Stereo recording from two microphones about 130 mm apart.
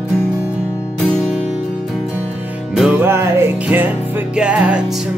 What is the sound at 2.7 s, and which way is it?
Music, centre (ahead or behind).